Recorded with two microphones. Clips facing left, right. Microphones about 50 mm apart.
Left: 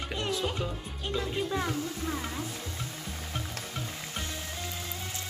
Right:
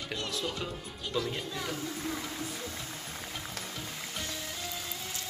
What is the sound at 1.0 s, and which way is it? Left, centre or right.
Speech, left.